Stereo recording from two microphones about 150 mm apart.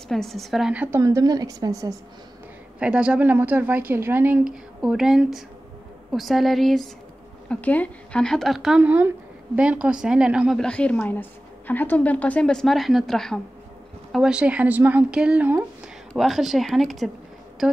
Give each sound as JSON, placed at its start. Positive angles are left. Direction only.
{"t": 0.1, "sound": "a woman's voice", "side_deg": 0}
{"t": 0.8, "sound": "a woman's voice", "side_deg": -20}
{"t": 2.8, "sound": "a woman's voice", "side_deg": -10}